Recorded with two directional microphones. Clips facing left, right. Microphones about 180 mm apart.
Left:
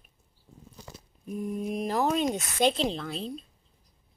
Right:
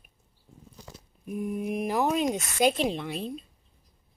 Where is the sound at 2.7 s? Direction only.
10° right (ahead or behind).